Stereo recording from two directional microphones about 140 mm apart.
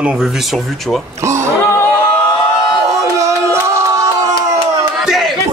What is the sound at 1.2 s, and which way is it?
Speech, 20° right (ahead or behind).